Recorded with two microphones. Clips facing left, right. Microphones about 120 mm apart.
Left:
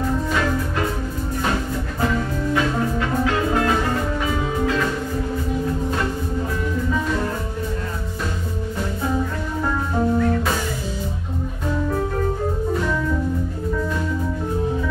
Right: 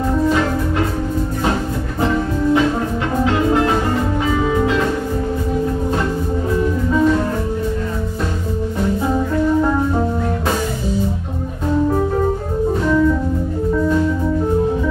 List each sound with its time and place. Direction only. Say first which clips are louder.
2.0 s music: right 5 dB; 25° right (ahead or behind)